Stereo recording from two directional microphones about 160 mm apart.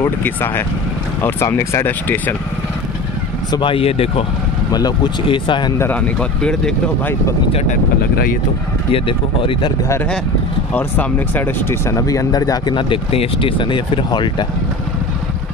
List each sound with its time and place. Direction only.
0.0 s speech: 15° left (ahead or behind)
3.5 s speech: 35° left (ahead or behind)
4.7 s speech: 25° left (ahead or behind)
5.8 s speech: 10° left (ahead or behind)
8.9 s speech: 35° left (ahead or behind)
10.7 s speech: 10° left (ahead or behind); by 14.3 s 30° left (ahead or behind)